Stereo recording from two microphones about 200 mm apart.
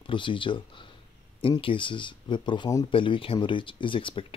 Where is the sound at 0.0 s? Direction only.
25° left (ahead or behind).